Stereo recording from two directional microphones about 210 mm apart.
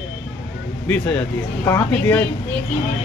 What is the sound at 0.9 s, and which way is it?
Speech, 5° left (ahead or behind).